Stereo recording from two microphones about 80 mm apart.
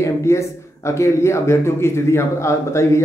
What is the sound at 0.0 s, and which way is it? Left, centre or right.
A man's voice, left.